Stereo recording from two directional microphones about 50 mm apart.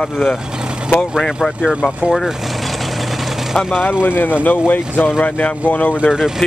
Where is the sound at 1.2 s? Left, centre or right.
Centre.